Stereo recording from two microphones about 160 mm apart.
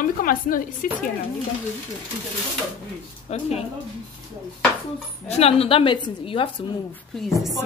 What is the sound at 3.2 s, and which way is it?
Speech, 40° left (ahead or behind).